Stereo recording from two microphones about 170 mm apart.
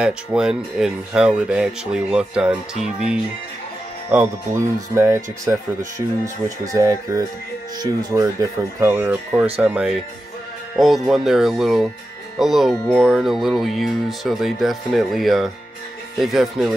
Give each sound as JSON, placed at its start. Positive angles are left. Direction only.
{"t": 0.0, "sound": "speech", "side_deg": -5}